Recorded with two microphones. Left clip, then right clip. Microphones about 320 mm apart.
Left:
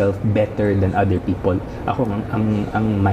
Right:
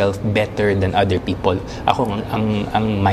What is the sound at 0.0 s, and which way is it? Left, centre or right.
Speech, right.